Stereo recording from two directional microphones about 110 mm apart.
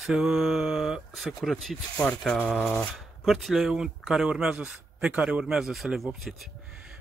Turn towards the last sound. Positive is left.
turn(degrees=-5)  # may be behind; listen again after turning